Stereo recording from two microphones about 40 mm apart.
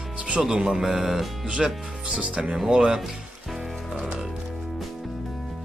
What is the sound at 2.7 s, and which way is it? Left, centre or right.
Speech, centre.